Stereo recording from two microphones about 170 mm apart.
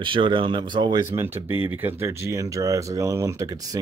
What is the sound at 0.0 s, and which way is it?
Speech, 30° right (ahead or behind).